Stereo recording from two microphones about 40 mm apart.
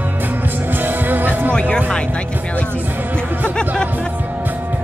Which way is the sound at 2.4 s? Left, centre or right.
Left.